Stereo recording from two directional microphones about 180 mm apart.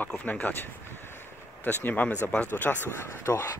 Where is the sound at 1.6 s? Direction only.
10° left (ahead or behind).